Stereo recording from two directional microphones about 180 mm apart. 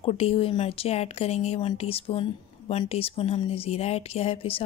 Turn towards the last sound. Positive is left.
turn(degrees=30)  # may be behind; listen again after turning